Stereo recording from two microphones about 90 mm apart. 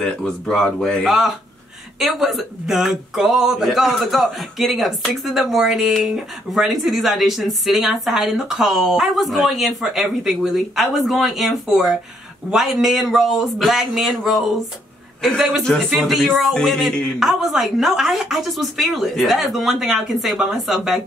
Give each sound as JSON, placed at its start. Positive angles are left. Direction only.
{"t": 0.0, "sound": "speech", "side_deg": 5}
{"t": 1.0, "sound": "speech", "side_deg": -5}